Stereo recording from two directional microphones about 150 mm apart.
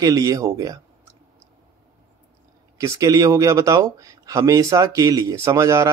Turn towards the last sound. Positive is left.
turn(degrees=-20)  # may be behind; listen again after turning